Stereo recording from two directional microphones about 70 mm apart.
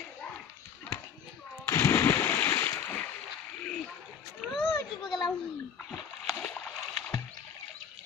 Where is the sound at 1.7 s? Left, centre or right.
Left.